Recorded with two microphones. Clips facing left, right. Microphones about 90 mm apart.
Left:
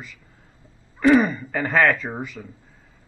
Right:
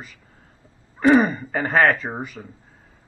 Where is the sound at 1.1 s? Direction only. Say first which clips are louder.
Right 1 dB; 35° right (ahead or behind).